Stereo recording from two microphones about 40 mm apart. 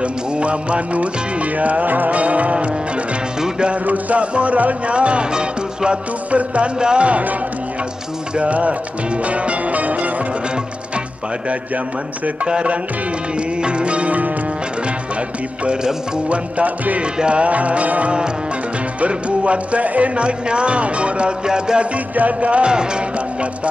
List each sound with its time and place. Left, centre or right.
0.0 s music: right
3.3 s music: centre
3.8 s music: right
6.8 s speech: right
7.1 s music: right
8.4 s music: right
13.6 s speech: right
16.3 s music: right
17.0 s music: right
18.9 s speech: right
21.9 s music: right